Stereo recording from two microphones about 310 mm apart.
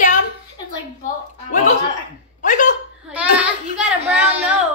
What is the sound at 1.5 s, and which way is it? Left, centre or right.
Chuckle, left.